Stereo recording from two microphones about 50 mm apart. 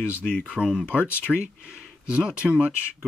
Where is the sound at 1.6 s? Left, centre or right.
Centre.